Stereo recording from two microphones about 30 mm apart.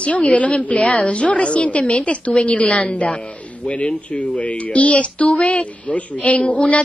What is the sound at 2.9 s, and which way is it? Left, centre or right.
Speech, left.